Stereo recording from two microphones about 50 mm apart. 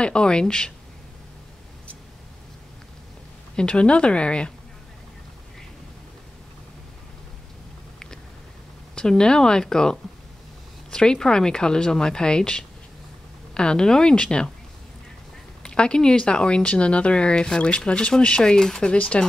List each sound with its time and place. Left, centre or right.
0.0 s speech: centre
3.5 s speech: left
8.9 s speech: centre
15.6 s speech: centre